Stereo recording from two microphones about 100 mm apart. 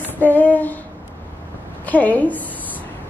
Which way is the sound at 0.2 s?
20° left (ahead or behind).